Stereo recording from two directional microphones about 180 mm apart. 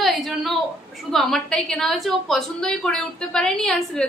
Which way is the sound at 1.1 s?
Centre (ahead or behind).